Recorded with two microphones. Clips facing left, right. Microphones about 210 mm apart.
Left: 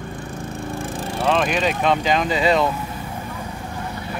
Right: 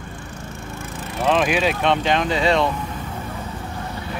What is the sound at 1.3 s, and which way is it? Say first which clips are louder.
Speech: right 1 dB; 5° right (ahead or behind).